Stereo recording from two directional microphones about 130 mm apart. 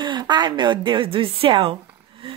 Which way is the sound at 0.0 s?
35° right (ahead or behind).